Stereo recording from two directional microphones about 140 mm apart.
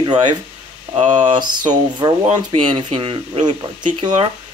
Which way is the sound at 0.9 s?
55° right (ahead or behind).